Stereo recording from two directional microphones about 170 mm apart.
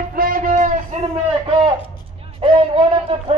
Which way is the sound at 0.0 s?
60° right (ahead or behind).